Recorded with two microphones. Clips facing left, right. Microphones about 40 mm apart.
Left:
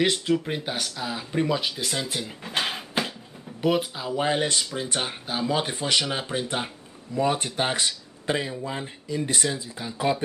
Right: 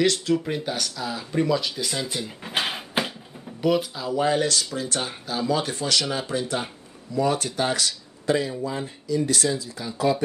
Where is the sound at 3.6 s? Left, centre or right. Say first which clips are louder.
Right 1 dB; centre.